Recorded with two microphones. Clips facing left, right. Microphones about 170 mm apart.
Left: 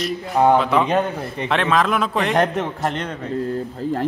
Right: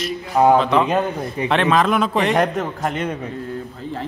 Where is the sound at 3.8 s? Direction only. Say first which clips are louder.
Left 9 dB; 40° left (ahead or behind).